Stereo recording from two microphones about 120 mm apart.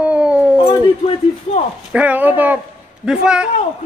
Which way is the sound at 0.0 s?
10° right (ahead or behind).